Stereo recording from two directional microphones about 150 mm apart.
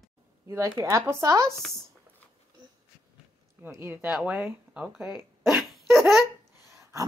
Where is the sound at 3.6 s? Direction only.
15° right (ahead or behind).